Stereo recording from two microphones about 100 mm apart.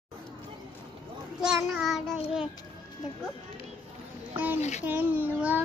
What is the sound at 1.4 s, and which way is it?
Speech, 5° right (ahead or behind).